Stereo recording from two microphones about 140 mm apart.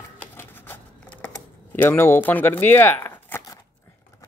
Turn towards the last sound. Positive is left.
turn(degrees=15)  # may be behind; listen again after turning